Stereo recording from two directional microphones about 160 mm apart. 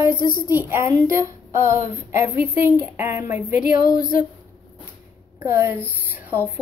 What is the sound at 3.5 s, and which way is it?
Speech, 60° left (ahead or behind).